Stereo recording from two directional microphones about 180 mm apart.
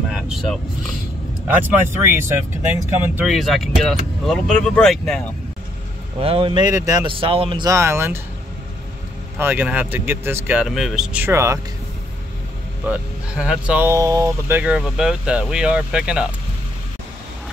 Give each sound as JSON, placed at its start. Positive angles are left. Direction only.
{"t": 0.1, "sound": "speech", "side_deg": 0}
{"t": 1.7, "sound": "speech", "side_deg": -10}
{"t": 3.2, "sound": "speech", "side_deg": 0}
{"t": 6.1, "sound": "speech", "side_deg": -30}
{"t": 7.7, "sound": "speech", "side_deg": -15}
{"t": 9.4, "sound": "speech", "side_deg": -10}
{"t": 12.8, "sound": "speech", "side_deg": -5}